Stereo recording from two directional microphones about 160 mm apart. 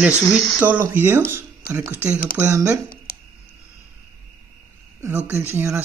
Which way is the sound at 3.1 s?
70° left (ahead or behind).